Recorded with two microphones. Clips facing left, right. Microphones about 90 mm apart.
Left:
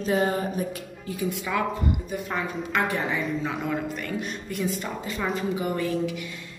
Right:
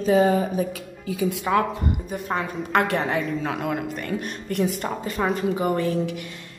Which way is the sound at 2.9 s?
75° right (ahead or behind).